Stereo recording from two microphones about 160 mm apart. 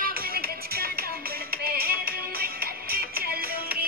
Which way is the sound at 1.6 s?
70° right (ahead or behind).